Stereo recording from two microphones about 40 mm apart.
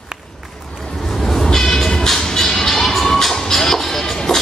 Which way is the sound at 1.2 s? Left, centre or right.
Centre.